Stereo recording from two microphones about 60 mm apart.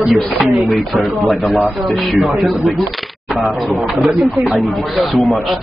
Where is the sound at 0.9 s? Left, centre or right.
Centre.